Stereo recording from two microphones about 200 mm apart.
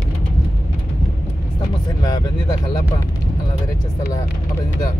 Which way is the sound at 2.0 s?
20° left (ahead or behind).